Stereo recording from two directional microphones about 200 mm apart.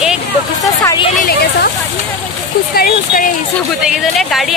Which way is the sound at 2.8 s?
45° left (ahead or behind).